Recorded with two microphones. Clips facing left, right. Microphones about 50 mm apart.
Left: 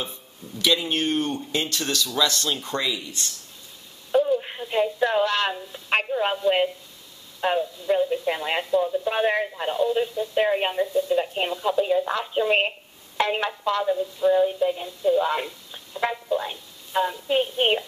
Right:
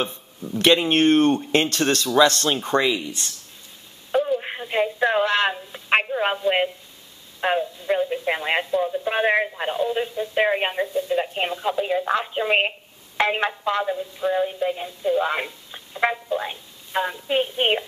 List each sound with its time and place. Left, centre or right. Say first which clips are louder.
0.0 s speech: right 6 dB; right
4.1 s a sound: left 1 dB; centre
6.0 s a woman's voice: right 1 dB; right
6.4 s music: even; centre